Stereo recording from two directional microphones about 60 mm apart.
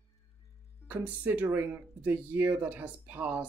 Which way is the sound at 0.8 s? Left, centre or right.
Right.